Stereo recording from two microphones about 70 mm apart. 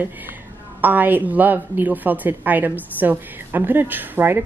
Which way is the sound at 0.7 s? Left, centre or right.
Right.